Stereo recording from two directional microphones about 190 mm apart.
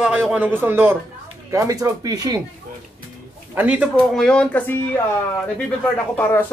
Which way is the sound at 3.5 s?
5° right (ahead or behind).